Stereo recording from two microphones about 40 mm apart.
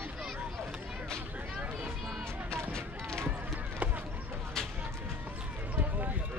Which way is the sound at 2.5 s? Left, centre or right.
Centre.